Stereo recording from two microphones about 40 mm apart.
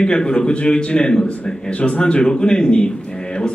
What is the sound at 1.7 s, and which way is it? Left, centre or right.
Speech, left.